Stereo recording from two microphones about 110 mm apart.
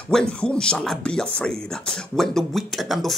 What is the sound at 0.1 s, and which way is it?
Speech, 10° left (ahead or behind).